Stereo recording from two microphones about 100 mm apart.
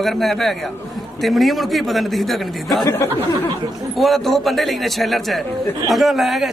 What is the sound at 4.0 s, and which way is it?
Speech, centre (ahead or behind).